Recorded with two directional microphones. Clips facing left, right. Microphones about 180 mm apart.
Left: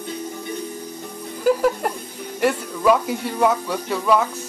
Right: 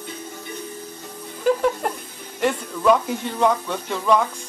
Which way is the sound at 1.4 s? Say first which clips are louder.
Left 1 dB; 5° left (ahead or behind).